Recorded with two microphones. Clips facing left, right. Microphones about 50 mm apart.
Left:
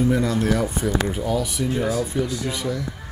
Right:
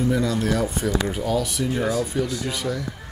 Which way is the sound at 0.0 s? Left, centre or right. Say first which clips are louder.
Left 2 dB; left.